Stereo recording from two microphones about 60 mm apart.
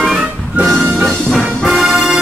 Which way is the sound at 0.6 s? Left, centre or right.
Right.